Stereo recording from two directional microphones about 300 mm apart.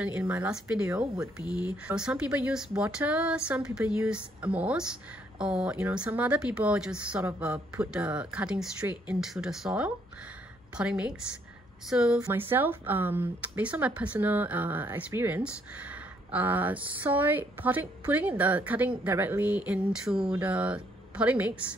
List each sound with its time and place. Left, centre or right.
0.0 s a woman's voice: centre